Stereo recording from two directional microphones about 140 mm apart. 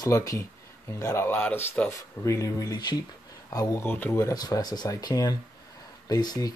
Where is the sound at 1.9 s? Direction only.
20° left (ahead or behind).